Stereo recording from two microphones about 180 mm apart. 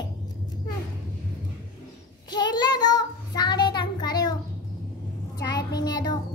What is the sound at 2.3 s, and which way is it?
Child singing, 25° left (ahead or behind).